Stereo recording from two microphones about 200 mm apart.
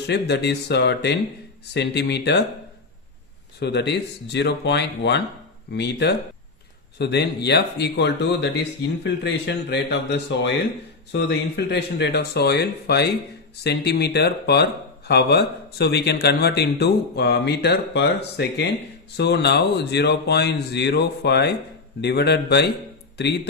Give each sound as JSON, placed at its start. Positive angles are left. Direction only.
{"t": 0.0, "sound": "speech", "side_deg": 55}
{"t": 3.5, "sound": "speech", "side_deg": 55}